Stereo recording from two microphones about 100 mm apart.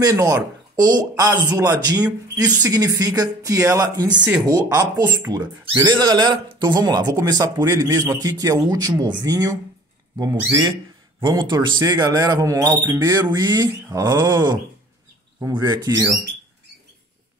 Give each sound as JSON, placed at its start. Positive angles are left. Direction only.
{"t": 0.0, "sound": "speech", "side_deg": -35}
{"t": 4.1, "sound": "speech", "side_deg": -15}
{"t": 4.4, "sound": "speech", "side_deg": -40}
{"t": 11.2, "sound": "speech", "side_deg": -45}
{"t": 13.3, "sound": "speech", "side_deg": -45}
{"t": 15.6, "sound": "speech", "side_deg": -45}